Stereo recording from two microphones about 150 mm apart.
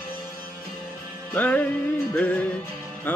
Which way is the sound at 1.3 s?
10° left (ahead or behind).